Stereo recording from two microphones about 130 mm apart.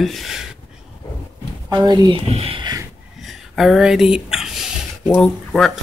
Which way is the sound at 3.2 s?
Centre (ahead or behind).